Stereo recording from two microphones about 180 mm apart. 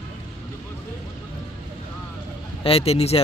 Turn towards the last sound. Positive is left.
turn(degrees=35)  # may be behind; listen again after turning